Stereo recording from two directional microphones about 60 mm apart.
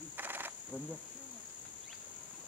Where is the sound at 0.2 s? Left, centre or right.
Right.